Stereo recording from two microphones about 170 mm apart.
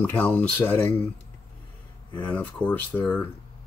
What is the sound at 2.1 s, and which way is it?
Speech, 10° left (ahead or behind).